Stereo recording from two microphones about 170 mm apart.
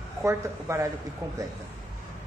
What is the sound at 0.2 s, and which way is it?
Speech, 15° right (ahead or behind).